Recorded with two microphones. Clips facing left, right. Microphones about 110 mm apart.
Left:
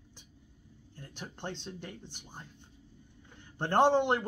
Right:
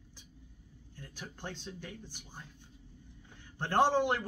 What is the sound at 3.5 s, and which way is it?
Speech, 20° left (ahead or behind).